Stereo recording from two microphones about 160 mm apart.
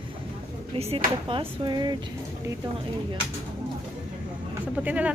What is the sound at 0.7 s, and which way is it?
Speech, 35° right (ahead or behind).